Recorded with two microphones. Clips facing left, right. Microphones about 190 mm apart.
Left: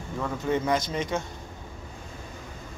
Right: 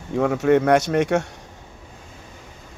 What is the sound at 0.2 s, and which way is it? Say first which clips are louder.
Speech: right 10 dB; 75° right (ahead or behind).